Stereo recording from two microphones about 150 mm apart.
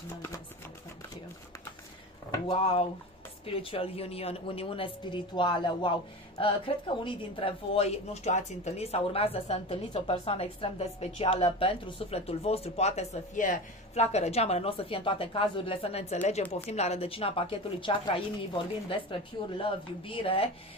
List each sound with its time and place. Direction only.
2.4 s a woman's voice: 40° left (ahead or behind)